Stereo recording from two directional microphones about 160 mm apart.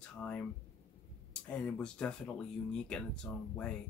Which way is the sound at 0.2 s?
10° left (ahead or behind).